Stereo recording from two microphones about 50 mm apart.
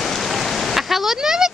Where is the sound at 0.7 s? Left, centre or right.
Centre.